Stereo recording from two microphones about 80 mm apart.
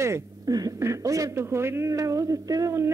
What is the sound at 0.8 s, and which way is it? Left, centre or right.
Speech, right.